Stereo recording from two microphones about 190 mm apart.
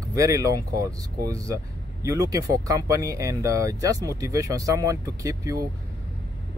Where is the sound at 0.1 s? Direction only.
15° right (ahead or behind).